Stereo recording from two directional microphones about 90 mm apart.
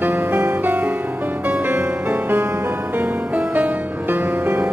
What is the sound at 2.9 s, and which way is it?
Music, 10° right (ahead or behind).